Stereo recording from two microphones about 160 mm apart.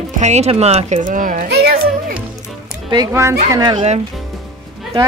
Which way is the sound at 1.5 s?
80° right.